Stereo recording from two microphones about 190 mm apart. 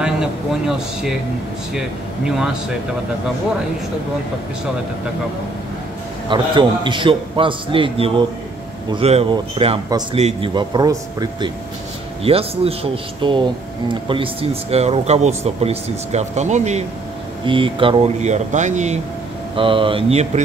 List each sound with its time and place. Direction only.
0.0 s speech: 5° right (ahead or behind)
2.2 s speech: 5° right (ahead or behind)
6.2 s a man's voice: 25° right (ahead or behind)
12.2 s speech: 30° right (ahead or behind)
17.5 s speech: 25° right (ahead or behind)
19.5 s a man's voice: 25° right (ahead or behind)